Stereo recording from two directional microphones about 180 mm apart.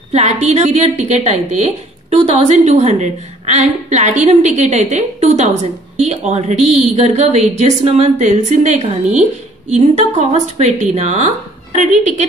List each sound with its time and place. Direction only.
0.1 s a woman's voice: 40° right (ahead or behind)